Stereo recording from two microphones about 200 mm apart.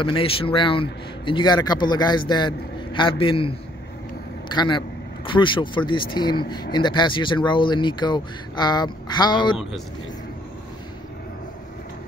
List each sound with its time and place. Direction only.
0.0 s speech: 25° left (ahead or behind)